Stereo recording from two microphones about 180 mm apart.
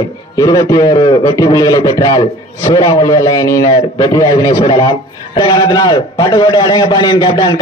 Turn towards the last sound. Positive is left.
turn(degrees=25)  # may be behind; listen again after turning